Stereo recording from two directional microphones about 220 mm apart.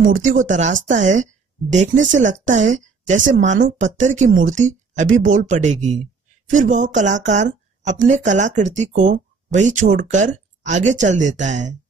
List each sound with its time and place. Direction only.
0.5 s speech: 35° right (ahead or behind)